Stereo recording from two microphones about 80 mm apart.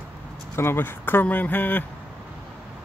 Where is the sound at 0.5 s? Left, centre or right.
Left.